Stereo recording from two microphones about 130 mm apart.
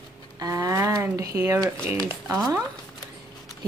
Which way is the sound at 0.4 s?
25° right (ahead or behind).